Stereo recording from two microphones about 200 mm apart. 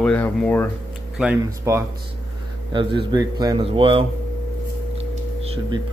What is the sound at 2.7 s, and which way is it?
Speech, 25° right (ahead or behind).